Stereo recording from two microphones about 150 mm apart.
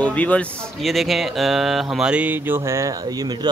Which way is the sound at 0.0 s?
10° left (ahead or behind).